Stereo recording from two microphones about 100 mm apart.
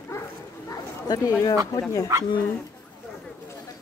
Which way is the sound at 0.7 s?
35° left (ahead or behind).